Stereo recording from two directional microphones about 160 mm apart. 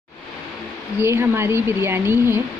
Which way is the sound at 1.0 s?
15° right (ahead or behind).